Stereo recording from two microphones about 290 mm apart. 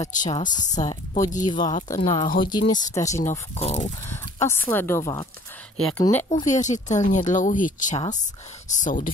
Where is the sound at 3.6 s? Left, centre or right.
Left.